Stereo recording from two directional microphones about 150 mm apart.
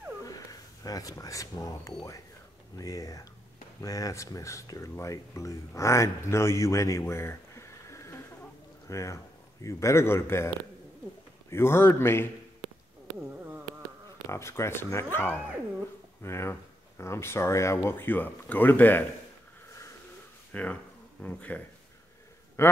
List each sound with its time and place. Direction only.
0.2 s a man's voice: 25° left (ahead or behind)
11.5 s speech: 15° left (ahead or behind)
14.3 s speech: 20° left (ahead or behind)
20.5 s a man's voice: 10° left (ahead or behind)